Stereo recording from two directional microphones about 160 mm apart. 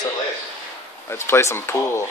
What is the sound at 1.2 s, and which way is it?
Speech, 15° left (ahead or behind).